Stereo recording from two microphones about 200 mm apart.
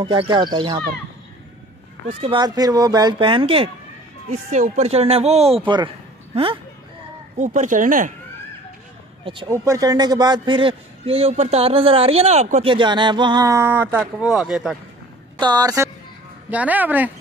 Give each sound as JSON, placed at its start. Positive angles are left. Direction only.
{"t": 0.0, "sound": "a man's voice", "side_deg": -25}
{"t": 2.0, "sound": "a man's voice", "side_deg": -25}
{"t": 7.3, "sound": "speech", "side_deg": -40}
{"t": 9.2, "sound": "a man's voice", "side_deg": -25}
{"t": 15.3, "sound": "a woman's voice", "side_deg": -20}